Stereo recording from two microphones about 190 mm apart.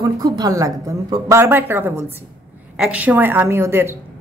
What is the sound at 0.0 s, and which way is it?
A woman's voice, 20° right (ahead or behind).